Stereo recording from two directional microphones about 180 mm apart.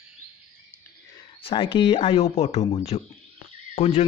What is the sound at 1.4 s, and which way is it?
Speech, 30° left (ahead or behind).